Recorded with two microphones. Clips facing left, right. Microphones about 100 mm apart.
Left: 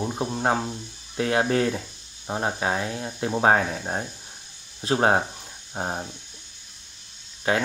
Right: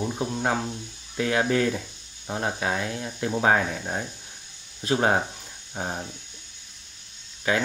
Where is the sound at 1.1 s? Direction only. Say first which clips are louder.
Left 1 dB; 30° left (ahead or behind).